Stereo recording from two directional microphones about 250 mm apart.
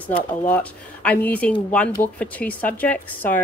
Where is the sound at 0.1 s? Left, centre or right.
Centre.